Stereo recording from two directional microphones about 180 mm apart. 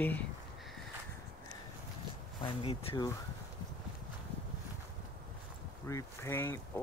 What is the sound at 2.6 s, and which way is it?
Speech, 30° left (ahead or behind).